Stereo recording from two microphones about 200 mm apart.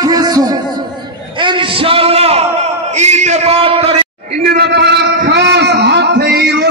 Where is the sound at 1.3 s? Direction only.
25° right (ahead or behind).